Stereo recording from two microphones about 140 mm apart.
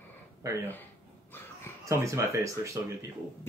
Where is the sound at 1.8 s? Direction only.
20° right (ahead or behind).